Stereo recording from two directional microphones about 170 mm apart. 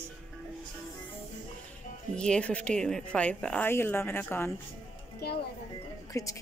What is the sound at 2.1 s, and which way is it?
A woman's voice, 5° left (ahead or behind).